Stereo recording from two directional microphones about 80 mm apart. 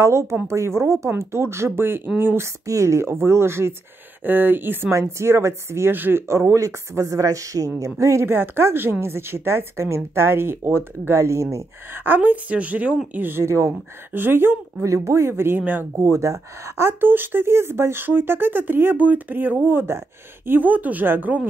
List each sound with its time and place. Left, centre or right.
0.0 s a woman's voice: right
2.6 s a woman's voice: right
6.2 s a woman's voice: right
16.1 s speech: right